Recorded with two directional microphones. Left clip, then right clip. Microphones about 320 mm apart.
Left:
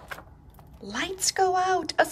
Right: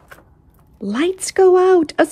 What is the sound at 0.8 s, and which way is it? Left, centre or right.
Speech, centre.